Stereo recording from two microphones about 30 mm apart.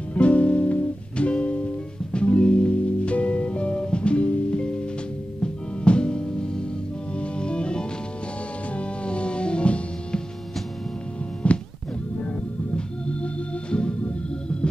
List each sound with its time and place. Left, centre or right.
0.1 s music: left
11.4 s music: left
12.7 s organ: left